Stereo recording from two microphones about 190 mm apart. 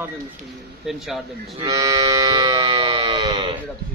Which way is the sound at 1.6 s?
20° right (ahead or behind).